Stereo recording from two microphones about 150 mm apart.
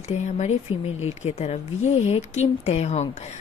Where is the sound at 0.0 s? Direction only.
50° left (ahead or behind).